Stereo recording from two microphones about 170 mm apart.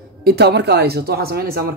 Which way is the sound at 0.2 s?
70° right (ahead or behind).